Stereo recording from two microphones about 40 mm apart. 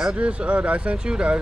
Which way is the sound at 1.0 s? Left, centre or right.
Right.